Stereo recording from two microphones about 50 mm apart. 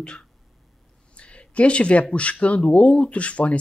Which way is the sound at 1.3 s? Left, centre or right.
Left.